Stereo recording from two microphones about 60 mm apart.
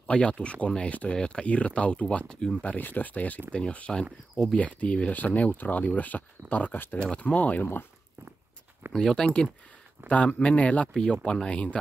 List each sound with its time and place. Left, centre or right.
0.0 s speech: centre
2.6 s speech: left
7.1 s speech: centre
8.9 s speech: centre
10.0 s speech: left
10.9 s speech: centre